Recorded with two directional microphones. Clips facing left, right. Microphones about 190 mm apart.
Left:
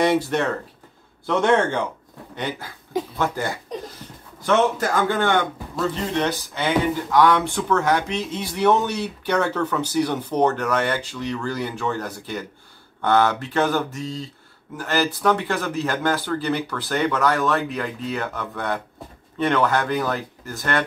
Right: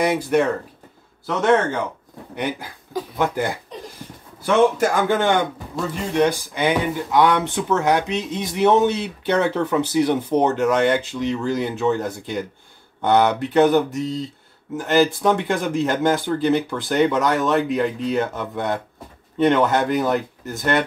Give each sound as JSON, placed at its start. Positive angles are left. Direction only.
{"t": 0.0, "sound": "a man's voice", "side_deg": -10}
{"t": 4.0, "sound": "a sound", "side_deg": -10}
{"t": 4.7, "sound": "a man's voice", "side_deg": -15}